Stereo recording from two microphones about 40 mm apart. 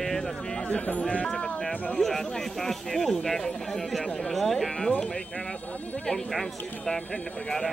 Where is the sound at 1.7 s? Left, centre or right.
Left.